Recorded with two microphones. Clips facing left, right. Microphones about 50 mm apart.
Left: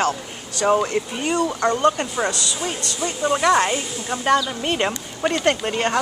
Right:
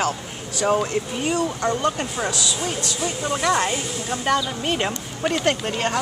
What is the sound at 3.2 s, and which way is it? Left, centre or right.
Speech, centre.